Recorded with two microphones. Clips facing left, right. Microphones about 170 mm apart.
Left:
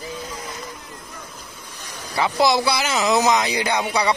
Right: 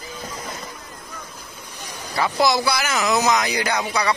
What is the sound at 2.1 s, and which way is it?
Speech, 20° left (ahead or behind).